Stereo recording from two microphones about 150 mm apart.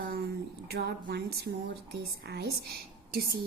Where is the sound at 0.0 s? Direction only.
90° right.